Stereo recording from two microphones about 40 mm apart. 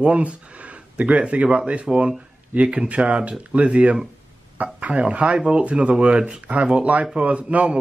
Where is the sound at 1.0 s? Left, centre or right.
Right.